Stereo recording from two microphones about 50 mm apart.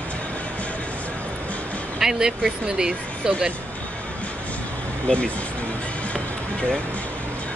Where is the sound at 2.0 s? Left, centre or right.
Centre.